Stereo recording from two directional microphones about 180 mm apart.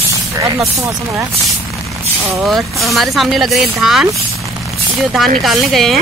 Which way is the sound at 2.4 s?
Centre (ahead or behind).